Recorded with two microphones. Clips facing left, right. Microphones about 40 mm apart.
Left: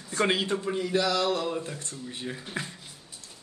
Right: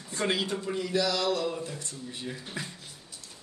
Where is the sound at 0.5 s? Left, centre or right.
Left.